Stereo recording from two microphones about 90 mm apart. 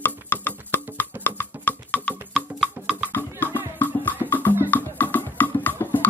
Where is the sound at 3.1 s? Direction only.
20° left (ahead or behind).